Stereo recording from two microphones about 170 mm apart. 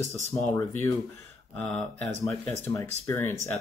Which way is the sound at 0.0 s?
15° left (ahead or behind).